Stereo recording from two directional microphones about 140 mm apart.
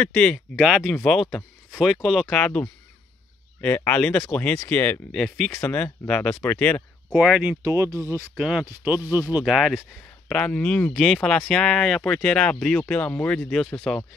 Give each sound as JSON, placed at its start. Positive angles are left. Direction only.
{"t": 0.0, "sound": "speech", "side_deg": 5}
{"t": 7.1, "sound": "speech", "side_deg": -5}
{"t": 7.6, "sound": "speech", "side_deg": -20}
{"t": 8.4, "sound": "speech", "side_deg": -5}
{"t": 9.4, "sound": "speech", "side_deg": 0}